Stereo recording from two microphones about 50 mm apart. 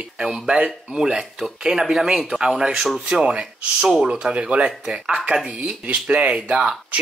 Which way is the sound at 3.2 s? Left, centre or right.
Right.